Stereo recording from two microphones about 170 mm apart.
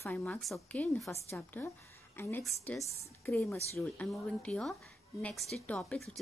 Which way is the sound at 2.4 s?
Centre (ahead or behind).